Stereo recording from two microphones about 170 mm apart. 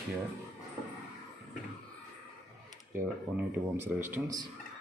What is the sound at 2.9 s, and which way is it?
Speech, 10° right (ahead or behind).